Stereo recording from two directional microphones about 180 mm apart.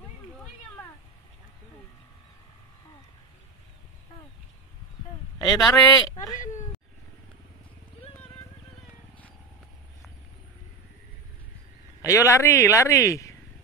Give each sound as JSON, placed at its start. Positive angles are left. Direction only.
{"t": 5.5, "sound": "speech", "side_deg": 20}
{"t": 12.0, "sound": "speech", "side_deg": 15}